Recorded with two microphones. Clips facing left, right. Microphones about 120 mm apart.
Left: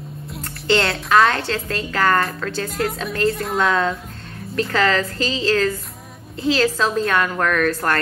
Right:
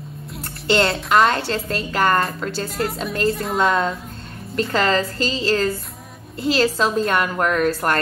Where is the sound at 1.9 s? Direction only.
25° right (ahead or behind).